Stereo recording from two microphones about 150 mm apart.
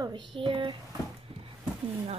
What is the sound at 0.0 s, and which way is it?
Speech, 30° right (ahead or behind).